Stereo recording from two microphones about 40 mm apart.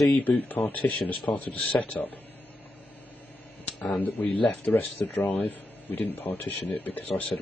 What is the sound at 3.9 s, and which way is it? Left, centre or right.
Speech, left.